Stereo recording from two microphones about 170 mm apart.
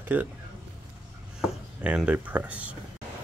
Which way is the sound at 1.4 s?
5° right (ahead or behind).